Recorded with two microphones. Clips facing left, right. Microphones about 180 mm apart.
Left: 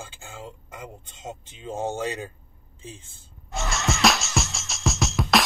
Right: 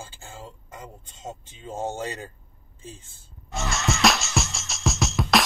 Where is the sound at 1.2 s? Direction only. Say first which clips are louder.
Even; 15° left (ahead or behind).